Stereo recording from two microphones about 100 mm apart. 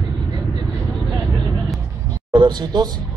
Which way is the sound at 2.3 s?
50° right (ahead or behind).